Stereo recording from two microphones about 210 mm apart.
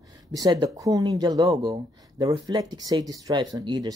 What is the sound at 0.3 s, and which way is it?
Speech, 20° right (ahead or behind).